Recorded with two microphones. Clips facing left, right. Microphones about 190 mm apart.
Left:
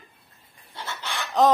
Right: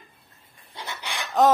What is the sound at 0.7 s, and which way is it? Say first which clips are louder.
Chicken: left 1 dB; 15° right (ahead or behind).